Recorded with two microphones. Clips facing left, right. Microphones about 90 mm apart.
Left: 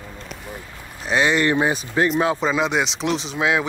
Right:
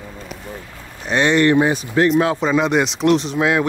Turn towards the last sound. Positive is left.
turn(degrees=0)  # may be behind; listen again after turning